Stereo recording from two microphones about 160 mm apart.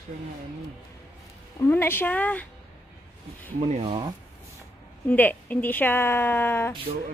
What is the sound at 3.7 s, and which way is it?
Speech, 40° right (ahead or behind).